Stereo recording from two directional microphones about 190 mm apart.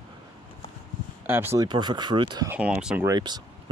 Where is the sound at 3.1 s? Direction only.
25° right (ahead or behind).